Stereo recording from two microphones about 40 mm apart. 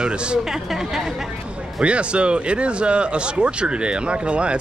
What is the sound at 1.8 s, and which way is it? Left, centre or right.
Speech, right.